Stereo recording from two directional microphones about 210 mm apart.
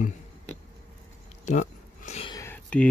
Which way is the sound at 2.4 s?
10° left (ahead or behind).